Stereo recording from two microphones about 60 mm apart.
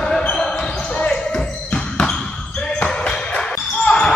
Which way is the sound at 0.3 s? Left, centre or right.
Centre.